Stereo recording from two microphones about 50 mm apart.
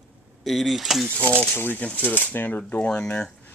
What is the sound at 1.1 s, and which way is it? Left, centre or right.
Speech, left.